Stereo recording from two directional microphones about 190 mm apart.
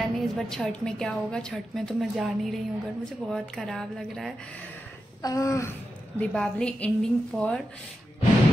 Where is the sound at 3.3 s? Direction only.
Centre (ahead or behind).